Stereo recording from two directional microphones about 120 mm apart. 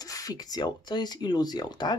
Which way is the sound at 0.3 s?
35° left (ahead or behind).